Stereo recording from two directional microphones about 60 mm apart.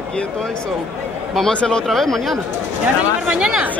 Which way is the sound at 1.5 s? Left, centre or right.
Centre.